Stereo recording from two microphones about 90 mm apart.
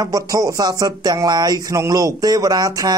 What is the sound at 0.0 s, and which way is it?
Speech, 40° right (ahead or behind).